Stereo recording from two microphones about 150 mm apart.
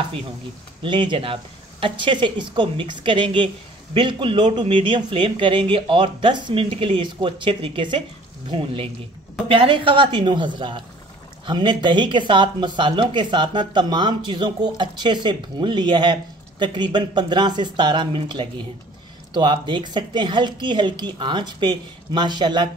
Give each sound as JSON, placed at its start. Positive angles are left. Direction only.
{"t": 0.8, "sound": "speech", "side_deg": -35}